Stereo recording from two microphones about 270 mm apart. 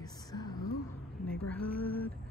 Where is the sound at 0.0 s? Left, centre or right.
Centre.